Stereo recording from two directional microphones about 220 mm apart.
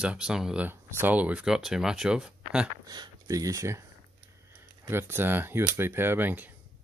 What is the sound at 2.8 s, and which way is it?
Speech, 20° right (ahead or behind).